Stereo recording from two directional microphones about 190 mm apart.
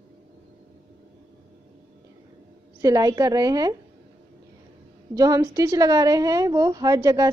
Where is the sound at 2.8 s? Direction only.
20° right (ahead or behind).